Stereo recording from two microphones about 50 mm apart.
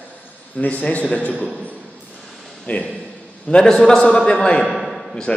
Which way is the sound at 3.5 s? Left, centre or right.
Centre.